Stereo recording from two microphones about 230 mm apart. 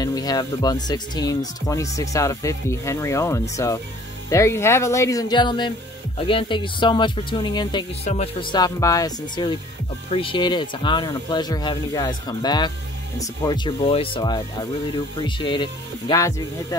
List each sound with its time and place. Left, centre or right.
0.0 s speech: centre